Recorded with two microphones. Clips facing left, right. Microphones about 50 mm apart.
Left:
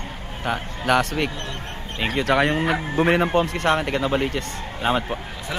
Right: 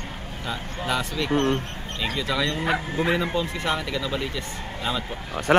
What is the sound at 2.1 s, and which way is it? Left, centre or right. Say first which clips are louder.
A man's voice: left 7 dB; left.